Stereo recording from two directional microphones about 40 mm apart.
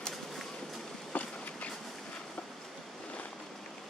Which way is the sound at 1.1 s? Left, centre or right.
Left.